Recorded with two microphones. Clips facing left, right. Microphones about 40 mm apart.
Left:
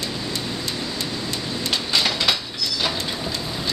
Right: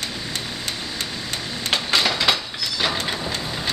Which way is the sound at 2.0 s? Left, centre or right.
Centre.